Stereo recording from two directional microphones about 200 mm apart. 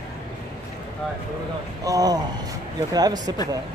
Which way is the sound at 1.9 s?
20° right (ahead or behind).